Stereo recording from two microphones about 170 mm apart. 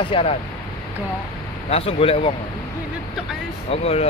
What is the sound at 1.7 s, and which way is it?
Speech, 35° left (ahead or behind).